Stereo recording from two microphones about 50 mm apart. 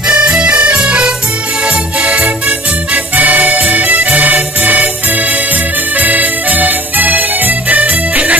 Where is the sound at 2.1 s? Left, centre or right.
Right.